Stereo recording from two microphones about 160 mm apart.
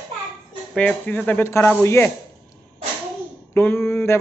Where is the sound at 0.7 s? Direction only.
10° left (ahead or behind).